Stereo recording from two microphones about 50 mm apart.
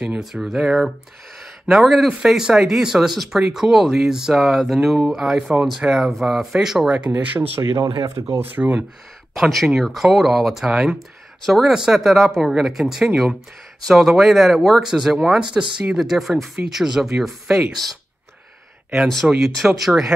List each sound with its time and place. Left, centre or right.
0.2 s speech: centre
7.2 s speech: right
9.4 s speech: centre
11.0 s speech: centre
11.7 s speech: centre
12.0 s speech: centre
19.2 s speech: centre